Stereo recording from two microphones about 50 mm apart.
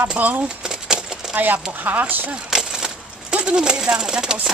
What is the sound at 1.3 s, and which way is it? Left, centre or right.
Speech, right.